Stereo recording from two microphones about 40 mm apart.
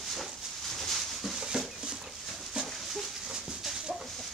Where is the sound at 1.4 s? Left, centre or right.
Centre.